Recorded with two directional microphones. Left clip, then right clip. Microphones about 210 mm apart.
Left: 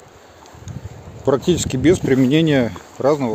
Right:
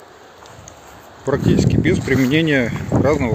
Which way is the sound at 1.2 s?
35° left (ahead or behind).